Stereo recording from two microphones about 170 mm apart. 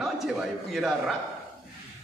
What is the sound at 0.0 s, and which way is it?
A man's voice, centre (ahead or behind).